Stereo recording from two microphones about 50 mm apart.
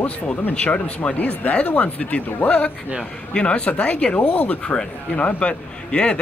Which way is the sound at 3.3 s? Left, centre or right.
Left.